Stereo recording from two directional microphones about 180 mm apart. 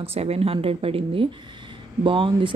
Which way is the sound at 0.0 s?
35° right (ahead or behind).